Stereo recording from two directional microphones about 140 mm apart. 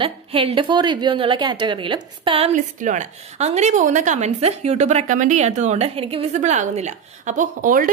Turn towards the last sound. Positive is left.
turn(degrees=-70)  # may be behind; listen again after turning